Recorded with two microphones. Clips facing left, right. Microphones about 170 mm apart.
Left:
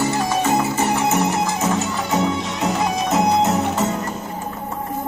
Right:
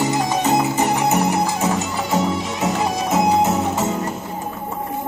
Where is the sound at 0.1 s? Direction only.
15° right (ahead or behind).